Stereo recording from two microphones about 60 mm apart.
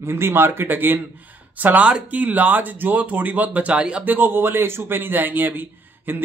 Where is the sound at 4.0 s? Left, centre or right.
Right.